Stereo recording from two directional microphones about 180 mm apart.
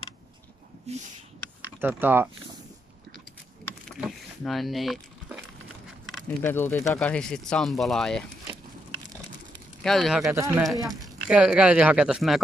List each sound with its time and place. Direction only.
0.9 s speech: 35° right (ahead or behind)
1.8 s speech: 10° right (ahead or behind)
4.0 s a sound: centre (ahead or behind)
6.4 s speech: 10° left (ahead or behind)
9.8 s speech: centre (ahead or behind)
10.3 s speech: 15° right (ahead or behind)